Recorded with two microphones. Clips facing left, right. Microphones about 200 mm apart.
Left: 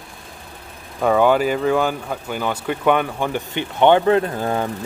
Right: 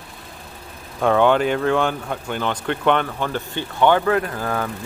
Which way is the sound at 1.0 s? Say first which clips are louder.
Left 1 dB; 5° left (ahead or behind).